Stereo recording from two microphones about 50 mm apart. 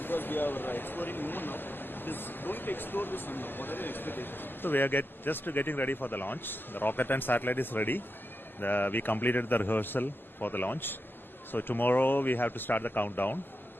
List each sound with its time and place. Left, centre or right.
0.0 s a man's voice: left